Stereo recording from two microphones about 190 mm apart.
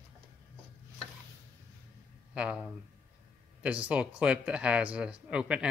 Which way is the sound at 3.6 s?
5° right (ahead or behind).